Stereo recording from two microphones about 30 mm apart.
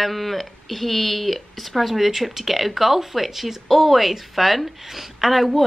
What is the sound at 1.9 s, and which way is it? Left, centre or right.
A woman's voice, centre.